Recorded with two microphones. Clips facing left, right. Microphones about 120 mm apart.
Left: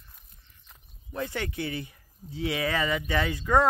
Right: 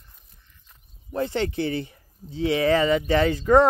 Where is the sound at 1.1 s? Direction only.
35° right (ahead or behind).